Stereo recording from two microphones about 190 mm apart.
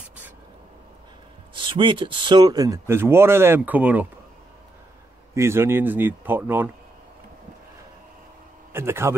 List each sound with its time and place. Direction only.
1.5 s speech: 25° right (ahead or behind); by 4.1 s 10° right (ahead or behind)
5.3 s speech: 15° right (ahead or behind)
8.7 s speech: 15° right (ahead or behind)